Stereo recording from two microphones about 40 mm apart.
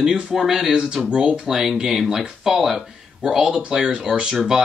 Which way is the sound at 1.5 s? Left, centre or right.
Centre.